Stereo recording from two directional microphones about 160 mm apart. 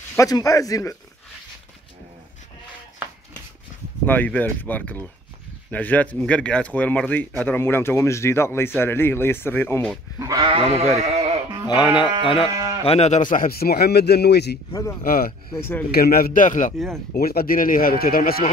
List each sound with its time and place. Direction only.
0.2 s speech: 20° left (ahead or behind)
4.0 s speech: 10° left (ahead or behind)
10.1 s sheep: 20° right (ahead or behind)
10.5 s speech: 40° right (ahead or behind)
11.6 s speech: 30° left (ahead or behind)
12.8 s a man's voice: 40° left (ahead or behind); by 14.6 s 90° left
14.7 s speech: 20° left (ahead or behind)
15.0 s a man's voice: 65° left (ahead or behind)
16.7 s speech: centre (ahead or behind)
17.1 s a man's voice: 70° left (ahead or behind)